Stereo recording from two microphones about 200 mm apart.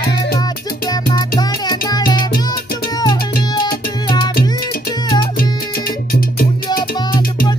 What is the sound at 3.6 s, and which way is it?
Music, 20° left (ahead or behind).